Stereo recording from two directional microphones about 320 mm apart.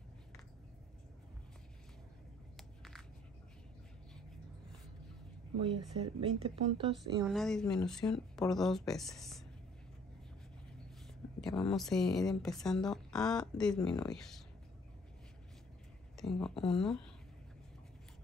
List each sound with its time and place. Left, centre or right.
2.5 s a sound: centre
5.6 s speech: centre
7.0 s speech: centre
11.7 s speech: centre
16.2 s speech: centre